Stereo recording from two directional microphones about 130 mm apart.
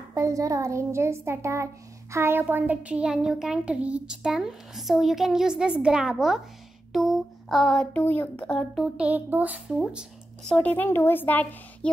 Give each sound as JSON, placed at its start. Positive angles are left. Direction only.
{"t": 0.1, "sound": "a child's voice", "side_deg": -25}
{"t": 10.5, "sound": "a woman's voice", "side_deg": 10}